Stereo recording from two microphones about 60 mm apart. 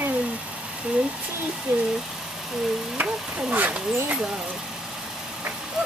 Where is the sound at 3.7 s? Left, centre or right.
Centre.